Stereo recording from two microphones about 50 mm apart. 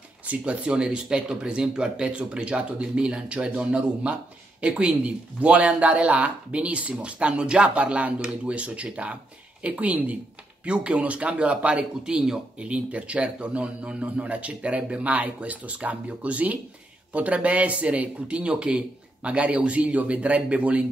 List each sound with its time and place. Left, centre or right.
0.3 s speech: right